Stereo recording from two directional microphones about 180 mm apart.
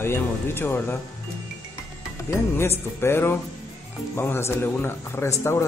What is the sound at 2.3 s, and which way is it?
Speech, 15° left (ahead or behind).